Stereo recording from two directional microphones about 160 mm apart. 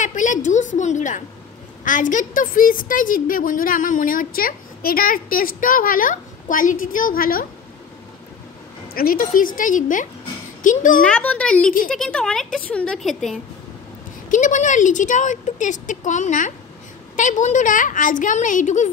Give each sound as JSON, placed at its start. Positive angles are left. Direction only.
{"t": 0.0, "sound": "a woman's voice", "side_deg": 50}
{"t": 8.9, "sound": "a woman's voice", "side_deg": 65}
{"t": 11.0, "sound": "a woman's voice", "side_deg": 10}
{"t": 14.3, "sound": "speech", "side_deg": 50}